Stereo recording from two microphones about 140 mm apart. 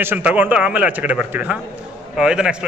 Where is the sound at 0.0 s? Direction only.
10° right (ahead or behind).